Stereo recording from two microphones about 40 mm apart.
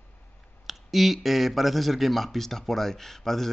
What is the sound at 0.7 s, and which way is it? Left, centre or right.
Speech, centre.